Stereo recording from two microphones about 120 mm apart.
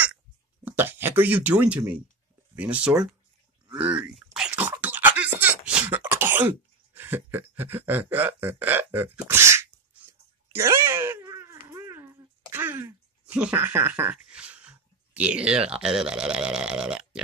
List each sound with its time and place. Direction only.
0.7 s speech: 15° right (ahead or behind)
3.7 s a sound: 10° right (ahead or behind); by 12.6 s 25° right (ahead or behind)
12.6 s speech: 20° right (ahead or behind)
14.1 s speech: 10° right (ahead or behind)